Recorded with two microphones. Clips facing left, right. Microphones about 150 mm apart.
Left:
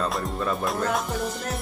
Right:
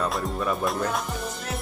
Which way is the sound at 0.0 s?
5° right (ahead or behind).